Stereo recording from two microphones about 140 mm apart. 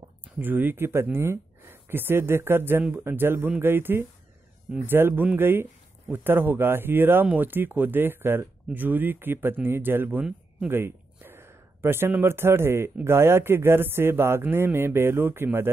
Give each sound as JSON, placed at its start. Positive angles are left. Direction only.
{"t": 0.2, "sound": "speech", "side_deg": -15}